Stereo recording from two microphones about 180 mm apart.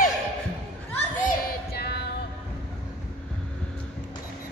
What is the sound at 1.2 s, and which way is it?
Music, 55° left (ahead or behind).